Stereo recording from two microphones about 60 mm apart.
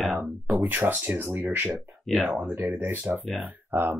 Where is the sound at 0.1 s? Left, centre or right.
Right.